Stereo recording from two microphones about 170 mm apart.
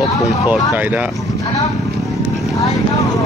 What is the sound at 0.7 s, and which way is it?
Speech, 10° right (ahead or behind).